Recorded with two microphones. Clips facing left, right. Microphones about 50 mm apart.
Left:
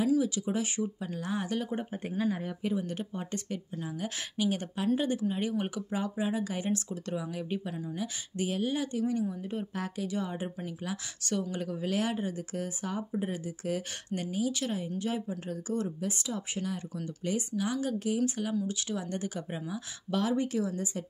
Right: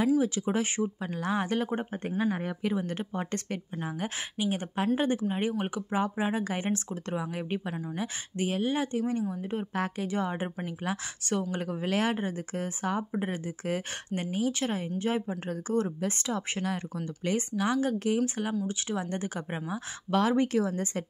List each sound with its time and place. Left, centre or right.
0.2 s speech: right
2.2 s speech: right
2.6 s speech: right
3.3 s speech: right
4.4 s speech: right
4.7 s speech: right
18.2 s speech: right